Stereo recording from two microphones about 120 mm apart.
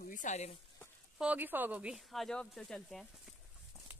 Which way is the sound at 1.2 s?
15° right (ahead or behind).